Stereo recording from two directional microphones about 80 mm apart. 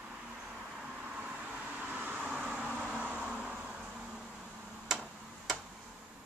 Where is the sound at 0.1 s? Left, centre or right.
Centre.